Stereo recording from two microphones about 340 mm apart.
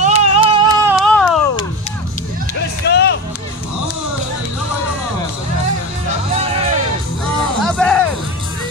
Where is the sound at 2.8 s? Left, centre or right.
Left.